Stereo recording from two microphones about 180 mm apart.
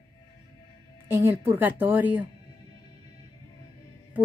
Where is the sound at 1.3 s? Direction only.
30° right (ahead or behind).